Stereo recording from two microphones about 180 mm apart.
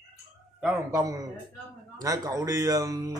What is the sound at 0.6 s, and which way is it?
Speech, 15° right (ahead or behind).